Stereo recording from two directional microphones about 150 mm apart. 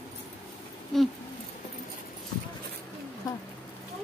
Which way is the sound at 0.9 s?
5° left (ahead or behind).